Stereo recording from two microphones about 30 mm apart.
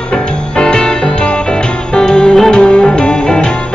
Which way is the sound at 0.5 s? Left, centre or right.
Left.